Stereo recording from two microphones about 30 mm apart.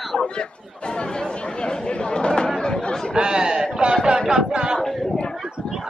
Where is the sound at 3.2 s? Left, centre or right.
Right.